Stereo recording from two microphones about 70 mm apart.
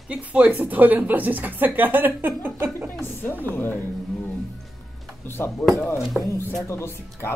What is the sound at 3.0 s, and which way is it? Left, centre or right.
A woman's voice, left.